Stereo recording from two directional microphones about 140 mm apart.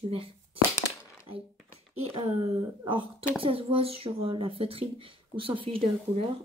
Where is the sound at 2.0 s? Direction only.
45° right (ahead or behind).